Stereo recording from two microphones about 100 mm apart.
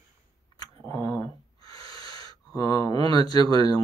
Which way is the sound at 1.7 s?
40° left (ahead or behind).